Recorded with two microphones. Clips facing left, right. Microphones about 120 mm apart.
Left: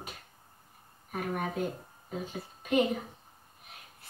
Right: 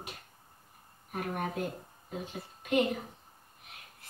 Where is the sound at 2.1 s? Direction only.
45° left (ahead or behind).